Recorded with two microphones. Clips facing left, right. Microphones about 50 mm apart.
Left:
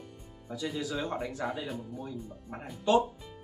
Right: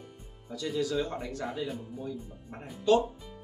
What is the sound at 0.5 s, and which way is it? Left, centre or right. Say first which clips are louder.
Speech: right 3 dB; centre.